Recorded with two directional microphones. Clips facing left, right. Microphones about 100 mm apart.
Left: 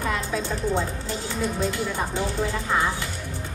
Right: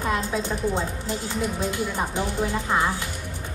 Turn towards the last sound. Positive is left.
turn(degrees=-15)  # may be behind; listen again after turning